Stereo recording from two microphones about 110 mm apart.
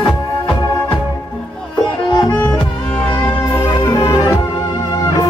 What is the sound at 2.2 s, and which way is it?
Music, 15° left (ahead or behind).